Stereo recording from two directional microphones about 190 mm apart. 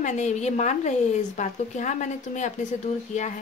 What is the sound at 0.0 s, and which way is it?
A woman's voice, 40° left (ahead or behind).